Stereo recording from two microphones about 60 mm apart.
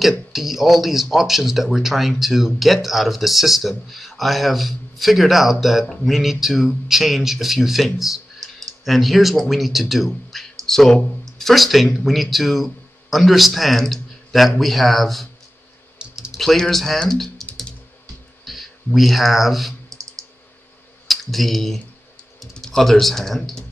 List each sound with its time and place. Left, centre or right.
0.3 s speech: centre
16.0 s typing: centre
16.3 s speech: centre
19.9 s a sound: right
21.1 s speech: centre